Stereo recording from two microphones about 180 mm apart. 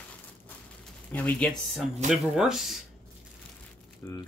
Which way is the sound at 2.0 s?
Centre (ahead or behind).